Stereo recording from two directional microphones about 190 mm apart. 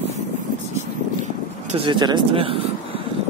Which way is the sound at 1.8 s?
25° right (ahead or behind).